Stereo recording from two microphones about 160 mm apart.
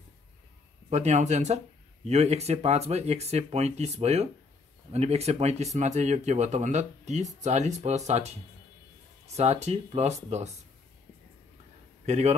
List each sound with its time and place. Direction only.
0.8 s speech: 45° right (ahead or behind)
9.4 s speech: 40° right (ahead or behind)
12.1 s speech: 45° right (ahead or behind)